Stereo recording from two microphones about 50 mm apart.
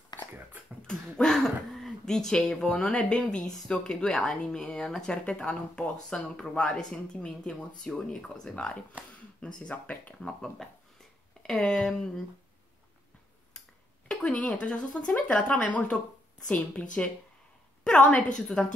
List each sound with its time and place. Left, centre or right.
0.8 s a sound: centre
1.4 s speech: centre
9.7 s speech: left
10.2 s speech: centre
14.0 s a sound: centre
14.6 s speech: left
18.1 s speech: centre